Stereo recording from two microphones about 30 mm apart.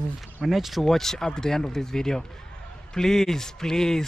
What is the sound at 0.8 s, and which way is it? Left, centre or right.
Speech, centre.